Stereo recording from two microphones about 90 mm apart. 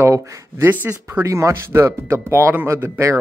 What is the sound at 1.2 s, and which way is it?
Speech, 35° right (ahead or behind).